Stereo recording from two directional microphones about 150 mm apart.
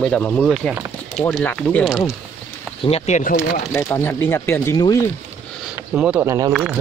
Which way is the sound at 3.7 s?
20° left (ahead or behind).